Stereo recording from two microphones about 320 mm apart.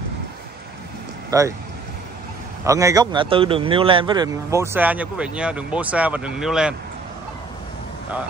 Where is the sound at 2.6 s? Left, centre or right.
Centre.